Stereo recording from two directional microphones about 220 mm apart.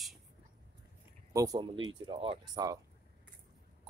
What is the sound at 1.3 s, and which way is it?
Speech, 15° right (ahead or behind).